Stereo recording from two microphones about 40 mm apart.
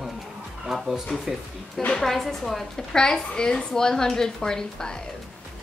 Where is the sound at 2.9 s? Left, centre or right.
Centre.